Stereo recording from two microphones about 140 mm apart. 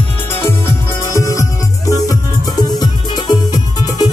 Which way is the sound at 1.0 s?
25° left (ahead or behind).